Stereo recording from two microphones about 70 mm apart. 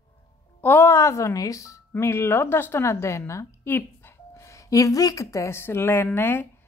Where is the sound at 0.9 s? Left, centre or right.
Left.